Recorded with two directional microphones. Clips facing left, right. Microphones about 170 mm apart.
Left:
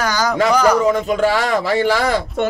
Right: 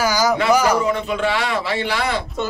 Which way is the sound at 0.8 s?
40° left (ahead or behind).